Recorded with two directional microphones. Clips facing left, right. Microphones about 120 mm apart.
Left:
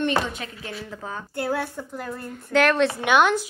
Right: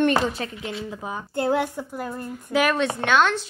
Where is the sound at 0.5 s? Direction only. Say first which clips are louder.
Right 3 dB; 20° right (ahead or behind).